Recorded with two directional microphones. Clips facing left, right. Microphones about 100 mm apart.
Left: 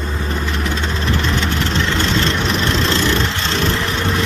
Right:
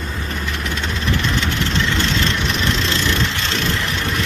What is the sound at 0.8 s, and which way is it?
Vehicle, 35° left (ahead or behind).